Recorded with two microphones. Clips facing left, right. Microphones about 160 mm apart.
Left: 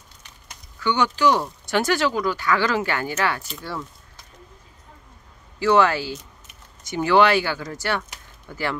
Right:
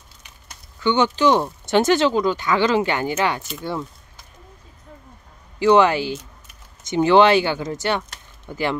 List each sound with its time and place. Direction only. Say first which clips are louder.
0.7 s speech: right 3 dB; 25° right (ahead or behind)
5.6 s speech: right 3 dB; 20° right (ahead or behind)